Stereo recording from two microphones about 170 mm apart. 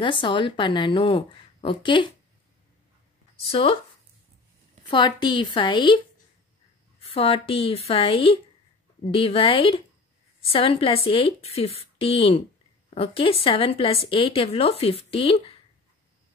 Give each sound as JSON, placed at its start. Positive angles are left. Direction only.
{"t": 0.0, "sound": "a woman's voice", "side_deg": 30}
{"t": 3.3, "sound": "speech", "side_deg": 35}
{"t": 4.9, "sound": "a woman's voice", "side_deg": 25}